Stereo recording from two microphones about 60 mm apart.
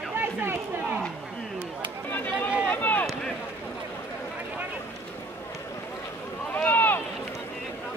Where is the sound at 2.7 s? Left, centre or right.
Left.